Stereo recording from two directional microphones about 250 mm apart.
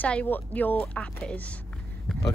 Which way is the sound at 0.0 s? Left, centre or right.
Centre.